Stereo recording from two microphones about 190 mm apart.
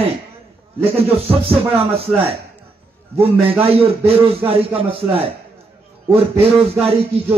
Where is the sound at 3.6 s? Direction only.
30° right (ahead or behind).